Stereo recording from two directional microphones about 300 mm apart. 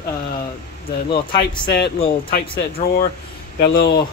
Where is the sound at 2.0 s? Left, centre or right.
Left.